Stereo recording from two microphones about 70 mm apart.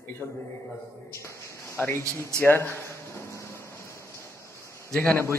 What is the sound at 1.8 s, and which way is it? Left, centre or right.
Speech, left.